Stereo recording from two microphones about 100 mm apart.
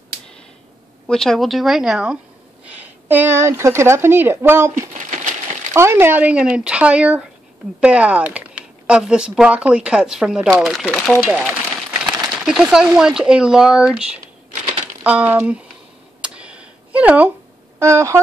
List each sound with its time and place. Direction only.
1.0 s a woman's voice: 5° left (ahead or behind); by 15.6 s 15° right (ahead or behind)
16.2 s a sound: 10° right (ahead or behind)
17.7 s speech: 30° right (ahead or behind)